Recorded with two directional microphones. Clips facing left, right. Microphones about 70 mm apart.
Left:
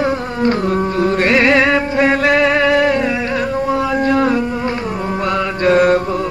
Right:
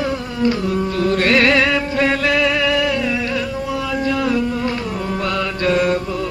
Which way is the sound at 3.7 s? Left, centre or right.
Left.